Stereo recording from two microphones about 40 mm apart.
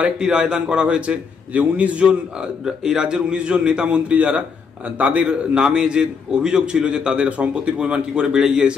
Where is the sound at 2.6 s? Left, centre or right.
Centre.